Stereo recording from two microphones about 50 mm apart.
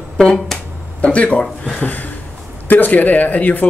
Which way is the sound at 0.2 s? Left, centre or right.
Centre.